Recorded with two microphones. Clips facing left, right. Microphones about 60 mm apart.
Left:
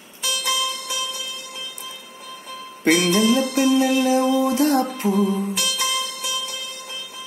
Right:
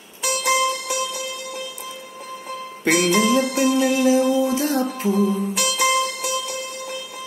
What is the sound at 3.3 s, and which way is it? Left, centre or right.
Music, left.